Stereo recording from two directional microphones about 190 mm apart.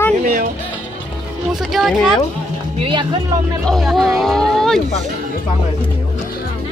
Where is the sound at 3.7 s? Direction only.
Centre (ahead or behind).